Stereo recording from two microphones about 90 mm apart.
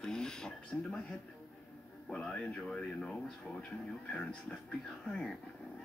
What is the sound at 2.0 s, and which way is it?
Speech, 10° left (ahead or behind).